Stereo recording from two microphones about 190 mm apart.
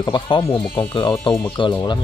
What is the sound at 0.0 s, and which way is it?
Speech, 25° left (ahead or behind).